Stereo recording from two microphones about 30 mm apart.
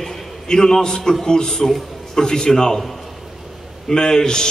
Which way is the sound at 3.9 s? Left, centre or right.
Left.